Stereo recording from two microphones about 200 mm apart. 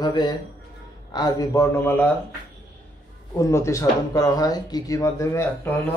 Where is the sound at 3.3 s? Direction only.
15° left (ahead or behind).